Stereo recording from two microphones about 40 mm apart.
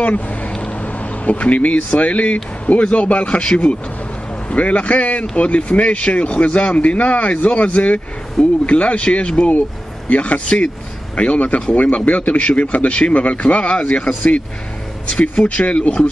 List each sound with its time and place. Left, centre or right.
0.0 s speech: left
0.6 s vehicle: left
2.0 s speech: left